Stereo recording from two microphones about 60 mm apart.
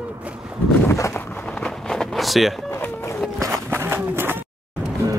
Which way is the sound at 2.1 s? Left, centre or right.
Centre.